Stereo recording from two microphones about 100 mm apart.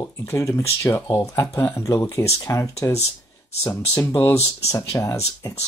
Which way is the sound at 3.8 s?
20° left (ahead or behind).